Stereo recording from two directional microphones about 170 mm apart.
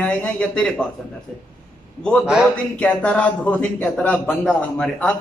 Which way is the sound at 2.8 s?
5° left (ahead or behind).